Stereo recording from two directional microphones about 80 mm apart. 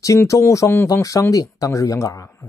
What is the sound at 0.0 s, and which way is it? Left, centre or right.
Speech, left.